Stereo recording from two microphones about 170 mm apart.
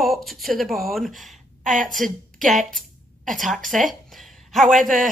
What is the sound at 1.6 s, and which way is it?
Speech, 50° right (ahead or behind).